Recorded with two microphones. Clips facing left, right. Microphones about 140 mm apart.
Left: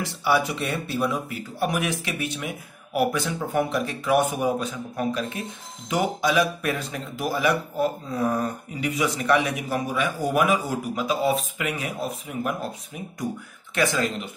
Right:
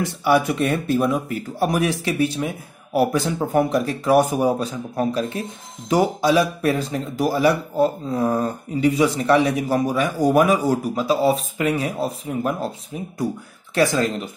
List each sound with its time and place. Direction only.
0.2 s speech: 50° right (ahead or behind); by 14.3 s 35° right (ahead or behind)